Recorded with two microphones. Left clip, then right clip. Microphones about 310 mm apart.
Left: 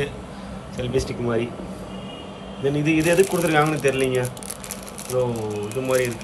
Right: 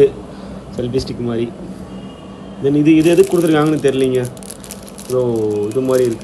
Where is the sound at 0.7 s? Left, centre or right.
Left.